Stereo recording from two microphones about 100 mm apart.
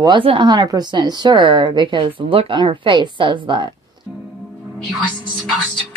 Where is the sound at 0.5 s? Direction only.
45° right (ahead or behind).